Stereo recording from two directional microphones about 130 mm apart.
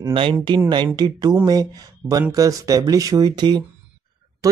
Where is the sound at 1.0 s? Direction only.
30° right (ahead or behind).